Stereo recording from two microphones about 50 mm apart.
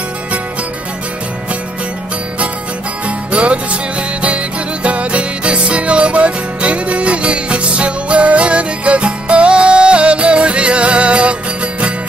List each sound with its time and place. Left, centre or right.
3.1 s music: right
4.8 s music: right